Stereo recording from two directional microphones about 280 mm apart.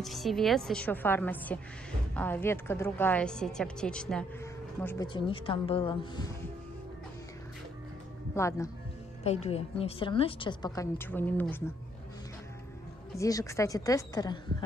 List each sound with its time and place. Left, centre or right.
0.0 s a woman's voice: centre
8.4 s a woman's voice: centre
9.2 s a woman's voice: left; by 11.6 s centre
13.2 s a woman's voice: centre